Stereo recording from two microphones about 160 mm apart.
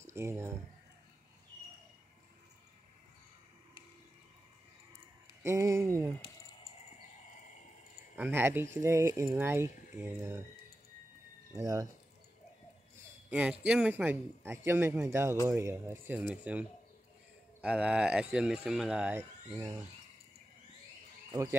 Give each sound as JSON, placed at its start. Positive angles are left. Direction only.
{"t": 0.0, "sound": "speech", "side_deg": -15}
{"t": 5.4, "sound": "speech", "side_deg": -15}
{"t": 8.2, "sound": "speech", "side_deg": -15}
{"t": 11.5, "sound": "speech", "side_deg": -20}
{"t": 13.3, "sound": "speech", "side_deg": -5}
{"t": 17.6, "sound": "speech", "side_deg": -5}